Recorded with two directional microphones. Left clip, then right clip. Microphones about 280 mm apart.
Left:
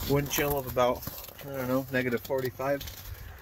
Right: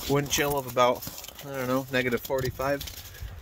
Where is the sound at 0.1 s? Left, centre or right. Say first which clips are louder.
Right 2 dB; right.